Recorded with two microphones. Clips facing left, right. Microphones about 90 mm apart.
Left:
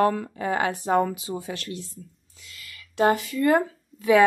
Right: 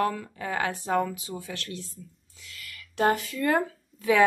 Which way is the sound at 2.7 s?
25° left (ahead or behind).